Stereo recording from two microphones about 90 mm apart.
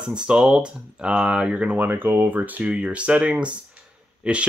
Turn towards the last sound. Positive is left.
turn(degrees=-10)  # may be behind; listen again after turning